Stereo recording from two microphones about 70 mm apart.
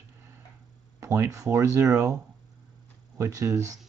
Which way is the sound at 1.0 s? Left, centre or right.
Right.